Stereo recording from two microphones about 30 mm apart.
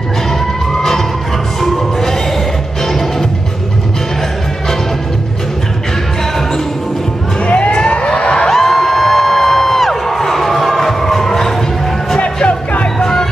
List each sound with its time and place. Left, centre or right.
1.6 s music: centre
7.4 s a sound: left
8.5 s music: centre